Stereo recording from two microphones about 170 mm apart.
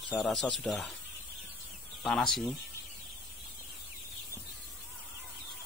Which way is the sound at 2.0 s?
Centre (ahead or behind).